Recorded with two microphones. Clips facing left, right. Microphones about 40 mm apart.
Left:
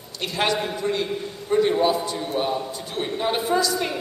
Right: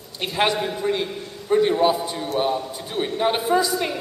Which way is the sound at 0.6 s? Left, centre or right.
Centre.